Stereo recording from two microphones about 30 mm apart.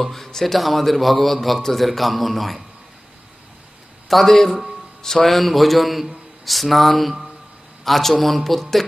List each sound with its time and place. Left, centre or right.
0.0 s a man's voice: centre
4.1 s a man's voice: centre
5.3 s a man's voice: centre